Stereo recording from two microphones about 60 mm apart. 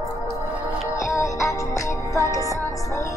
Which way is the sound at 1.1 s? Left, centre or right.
Left.